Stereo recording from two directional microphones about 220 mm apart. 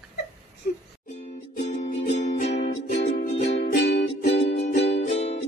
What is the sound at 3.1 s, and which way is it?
Music, 45° left (ahead or behind).